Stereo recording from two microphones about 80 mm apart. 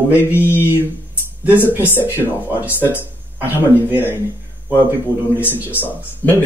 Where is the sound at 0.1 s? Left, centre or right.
Left.